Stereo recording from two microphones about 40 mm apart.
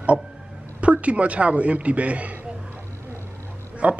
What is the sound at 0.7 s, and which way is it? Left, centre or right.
A man's voice, right.